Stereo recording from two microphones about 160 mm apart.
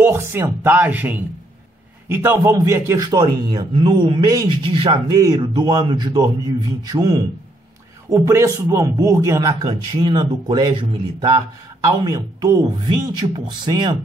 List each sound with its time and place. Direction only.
0.0 s a man's voice: 15° right (ahead or behind)